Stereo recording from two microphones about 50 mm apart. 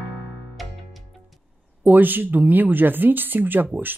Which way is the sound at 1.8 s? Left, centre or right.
Right.